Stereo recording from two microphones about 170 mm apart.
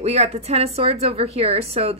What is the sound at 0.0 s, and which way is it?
Speech, 40° right (ahead or behind).